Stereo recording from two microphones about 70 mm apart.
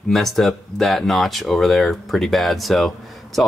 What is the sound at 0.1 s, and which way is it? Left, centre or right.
Speech, centre.